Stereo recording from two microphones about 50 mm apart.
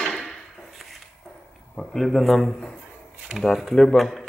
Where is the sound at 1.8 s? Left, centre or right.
Centre.